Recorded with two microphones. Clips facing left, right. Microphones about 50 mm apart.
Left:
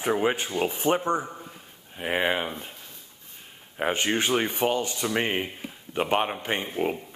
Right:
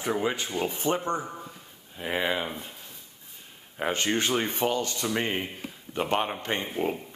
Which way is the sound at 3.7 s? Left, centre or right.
Centre.